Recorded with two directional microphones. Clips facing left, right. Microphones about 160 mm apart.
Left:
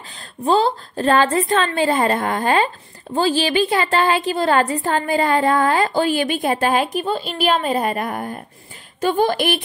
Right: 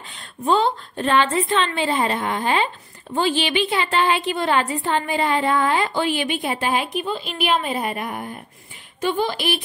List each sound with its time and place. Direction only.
0.1 s a woman's voice: 35° left (ahead or behind); by 9.6 s 50° left (ahead or behind)